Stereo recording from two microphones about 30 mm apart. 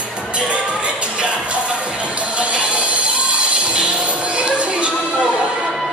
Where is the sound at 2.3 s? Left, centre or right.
Right.